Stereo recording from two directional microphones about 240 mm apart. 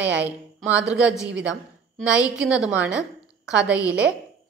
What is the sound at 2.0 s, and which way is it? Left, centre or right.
A woman's voice, centre.